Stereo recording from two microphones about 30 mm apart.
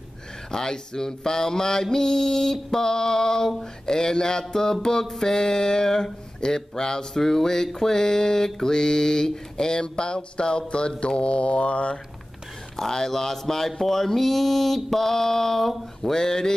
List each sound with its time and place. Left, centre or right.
0.5 s mantra: left
8.5 s speech: left
12.7 s mantra: centre